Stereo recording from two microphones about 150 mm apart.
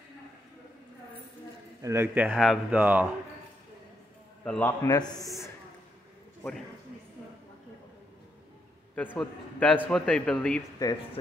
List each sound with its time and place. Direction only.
1.8 s a man's voice: 15° right (ahead or behind)
2.3 s a man's voice: centre (ahead or behind)
4.5 s a man's voice: 10° left (ahead or behind)
4.8 s a man's voice: 25° left (ahead or behind)
8.9 s a man's voice: 10° left (ahead or behind)
10.8 s a man's voice: 25° left (ahead or behind)